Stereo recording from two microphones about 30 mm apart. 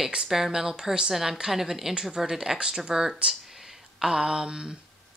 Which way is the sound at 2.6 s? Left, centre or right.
Right.